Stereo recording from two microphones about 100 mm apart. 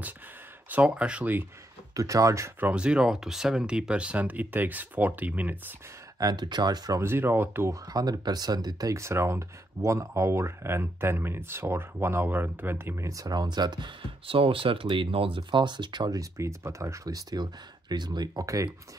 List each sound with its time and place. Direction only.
0.7 s speech: 15° right (ahead or behind)
2.0 s speech: 35° right (ahead or behind)
2.6 s speech: 10° right (ahead or behind)
6.1 s speech: 45° right (ahead or behind)
7.0 s speech: 25° right (ahead or behind)
7.8 s speech: 40° right (ahead or behind)
16.3 s speech: 30° right (ahead or behind)